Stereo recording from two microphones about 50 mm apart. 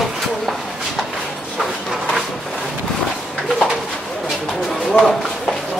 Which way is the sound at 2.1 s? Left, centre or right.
Centre.